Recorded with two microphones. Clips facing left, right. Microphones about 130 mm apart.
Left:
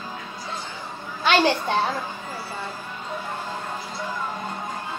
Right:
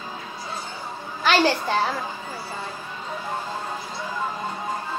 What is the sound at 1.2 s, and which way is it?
Speech, 20° left (ahead or behind).